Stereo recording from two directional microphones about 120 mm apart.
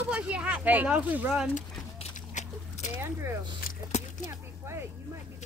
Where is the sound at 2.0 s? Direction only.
80° left.